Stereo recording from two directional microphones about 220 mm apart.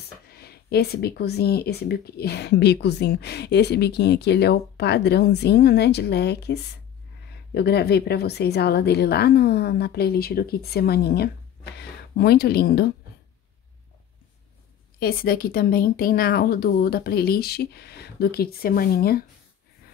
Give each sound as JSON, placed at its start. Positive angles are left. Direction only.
{"t": 0.3, "sound": "speech", "side_deg": 45}
{"t": 15.0, "sound": "speech", "side_deg": 45}